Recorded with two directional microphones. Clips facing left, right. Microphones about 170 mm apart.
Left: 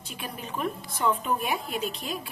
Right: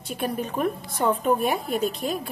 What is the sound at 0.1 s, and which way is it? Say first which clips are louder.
A woman's voice: right 9 dB; 45° right (ahead or behind).